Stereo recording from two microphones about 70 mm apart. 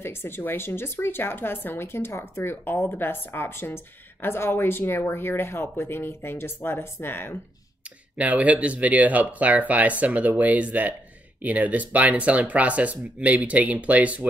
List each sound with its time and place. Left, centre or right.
0.0 s speech: left
8.2 s speech: right